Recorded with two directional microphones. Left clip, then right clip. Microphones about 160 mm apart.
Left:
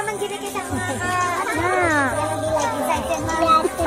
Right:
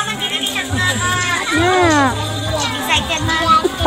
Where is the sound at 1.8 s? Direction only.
10° right (ahead or behind).